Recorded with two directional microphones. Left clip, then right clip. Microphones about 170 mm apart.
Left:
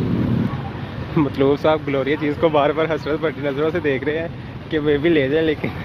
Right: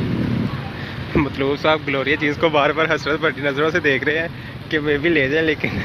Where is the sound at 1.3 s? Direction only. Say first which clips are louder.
Left 3 dB; 20° left (ahead or behind).